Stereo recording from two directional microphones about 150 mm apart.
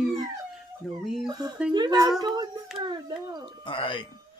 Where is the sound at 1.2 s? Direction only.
25° right (ahead or behind).